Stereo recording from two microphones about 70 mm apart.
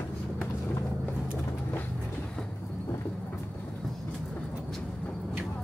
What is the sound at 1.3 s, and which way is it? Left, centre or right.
Vehicle, left.